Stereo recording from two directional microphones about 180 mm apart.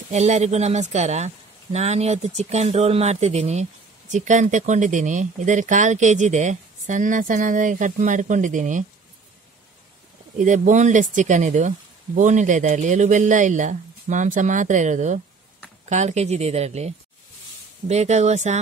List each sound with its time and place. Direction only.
0.1 s speech: 40° right (ahead or behind)
10.3 s speech: 45° right (ahead or behind)